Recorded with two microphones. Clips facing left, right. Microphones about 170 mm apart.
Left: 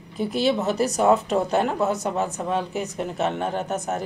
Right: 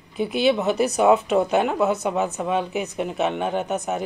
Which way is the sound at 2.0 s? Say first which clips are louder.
Right 2 dB; 15° right (ahead or behind).